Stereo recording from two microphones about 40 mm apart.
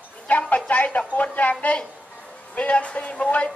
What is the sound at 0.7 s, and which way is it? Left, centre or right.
Speech, left.